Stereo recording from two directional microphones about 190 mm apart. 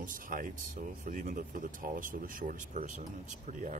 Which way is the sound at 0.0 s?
45° right (ahead or behind).